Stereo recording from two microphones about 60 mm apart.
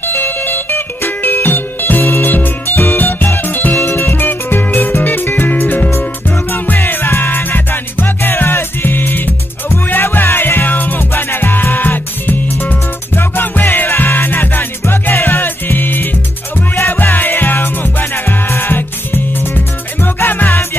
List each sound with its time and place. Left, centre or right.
0.0 s music: left